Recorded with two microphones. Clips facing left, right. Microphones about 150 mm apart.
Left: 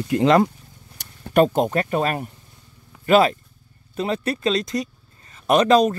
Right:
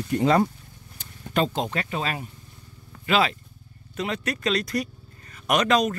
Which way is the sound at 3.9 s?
30° left (ahead or behind).